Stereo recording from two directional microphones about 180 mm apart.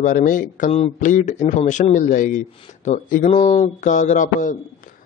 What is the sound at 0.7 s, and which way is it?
A man's voice, 35° left (ahead or behind).